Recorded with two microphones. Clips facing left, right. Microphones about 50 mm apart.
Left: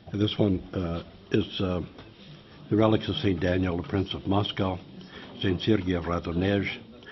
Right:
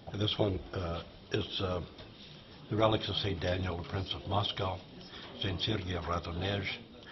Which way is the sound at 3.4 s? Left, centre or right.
Left.